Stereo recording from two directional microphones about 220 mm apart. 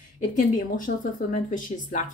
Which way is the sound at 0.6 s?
35° left (ahead or behind).